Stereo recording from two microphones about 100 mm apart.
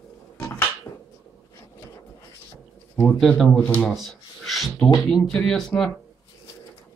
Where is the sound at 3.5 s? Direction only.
15° left (ahead or behind).